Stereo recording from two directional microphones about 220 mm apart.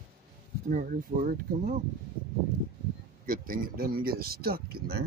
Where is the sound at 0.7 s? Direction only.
40° right (ahead or behind).